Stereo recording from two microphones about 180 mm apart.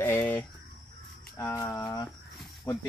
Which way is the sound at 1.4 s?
15° left (ahead or behind).